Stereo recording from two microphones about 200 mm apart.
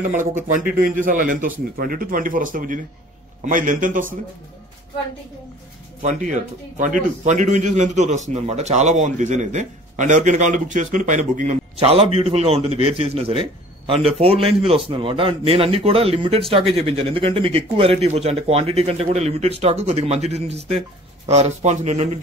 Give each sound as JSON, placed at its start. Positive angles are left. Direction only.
{"t": 0.1, "sound": "a man's voice", "side_deg": -40}
{"t": 6.0, "sound": "a man's voice", "side_deg": -40}